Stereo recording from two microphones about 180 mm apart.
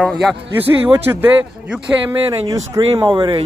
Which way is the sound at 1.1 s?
10° right (ahead or behind).